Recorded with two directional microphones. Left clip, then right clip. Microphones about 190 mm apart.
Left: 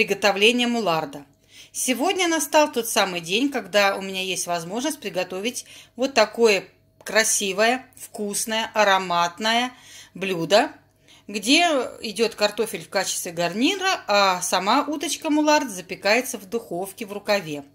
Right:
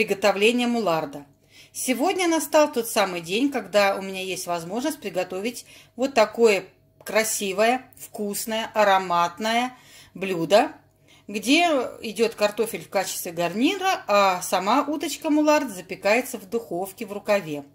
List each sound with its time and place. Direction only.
0.0 s speech: centre (ahead or behind)